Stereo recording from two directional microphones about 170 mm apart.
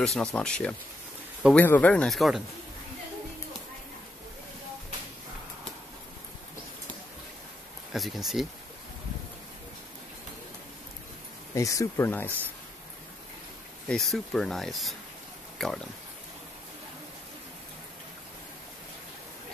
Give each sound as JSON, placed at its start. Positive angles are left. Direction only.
{"t": 0.0, "sound": "speech", "side_deg": 5}
{"t": 7.9, "sound": "speech", "side_deg": 0}
{"t": 11.5, "sound": "speech", "side_deg": 20}
{"t": 13.8, "sound": "speech", "side_deg": 0}